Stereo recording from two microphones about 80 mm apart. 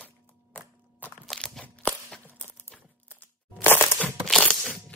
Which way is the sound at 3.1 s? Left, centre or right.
Left.